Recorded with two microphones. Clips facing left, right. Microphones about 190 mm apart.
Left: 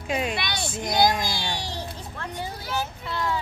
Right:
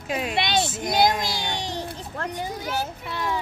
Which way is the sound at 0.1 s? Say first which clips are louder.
Left 1 dB; centre (ahead or behind).